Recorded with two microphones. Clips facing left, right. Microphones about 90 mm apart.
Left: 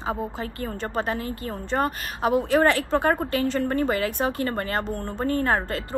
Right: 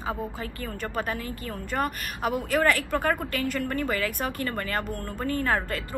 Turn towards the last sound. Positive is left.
turn(degrees=30)  # may be behind; listen again after turning